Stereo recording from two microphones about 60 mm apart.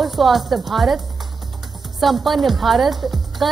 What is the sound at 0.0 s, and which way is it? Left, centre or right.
A woman's voice, centre.